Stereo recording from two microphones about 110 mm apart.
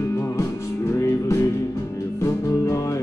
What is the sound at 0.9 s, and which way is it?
Music, 25° left (ahead or behind).